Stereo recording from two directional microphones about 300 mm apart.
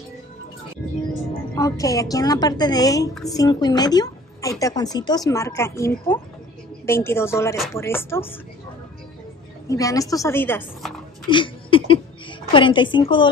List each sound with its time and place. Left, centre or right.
1.5 s a woman's voice: centre
9.7 s a woman's voice: centre
11.2 s a woman's voice: centre